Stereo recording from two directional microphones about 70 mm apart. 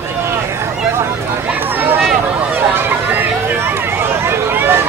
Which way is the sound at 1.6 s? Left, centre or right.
Right.